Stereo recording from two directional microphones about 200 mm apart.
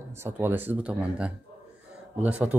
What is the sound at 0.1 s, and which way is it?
Speech, 10° right (ahead or behind).